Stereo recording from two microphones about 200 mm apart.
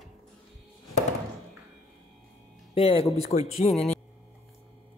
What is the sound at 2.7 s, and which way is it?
Speech, 25° left (ahead or behind).